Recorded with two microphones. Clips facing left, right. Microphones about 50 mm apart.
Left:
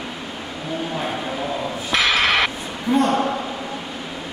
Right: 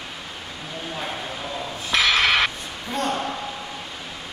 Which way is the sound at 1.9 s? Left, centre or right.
Centre.